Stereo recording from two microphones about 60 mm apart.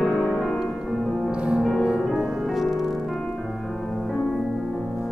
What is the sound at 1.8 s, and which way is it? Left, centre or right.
Music, centre.